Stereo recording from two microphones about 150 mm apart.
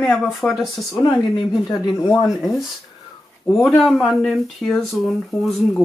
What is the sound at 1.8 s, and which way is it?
Speech, 30° left (ahead or behind).